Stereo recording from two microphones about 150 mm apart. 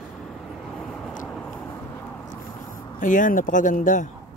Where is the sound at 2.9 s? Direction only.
60° left (ahead or behind).